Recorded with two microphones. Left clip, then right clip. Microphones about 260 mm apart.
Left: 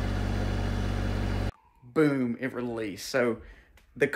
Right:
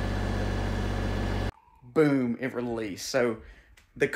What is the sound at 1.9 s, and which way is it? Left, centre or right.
Speech, centre.